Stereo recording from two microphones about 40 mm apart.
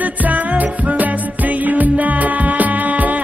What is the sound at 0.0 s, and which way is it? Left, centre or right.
Music, right.